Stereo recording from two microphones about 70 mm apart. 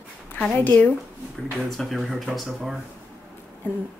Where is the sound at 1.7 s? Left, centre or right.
Centre.